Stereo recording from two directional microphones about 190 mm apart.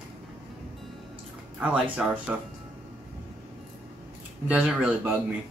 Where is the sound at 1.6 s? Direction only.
5° right (ahead or behind).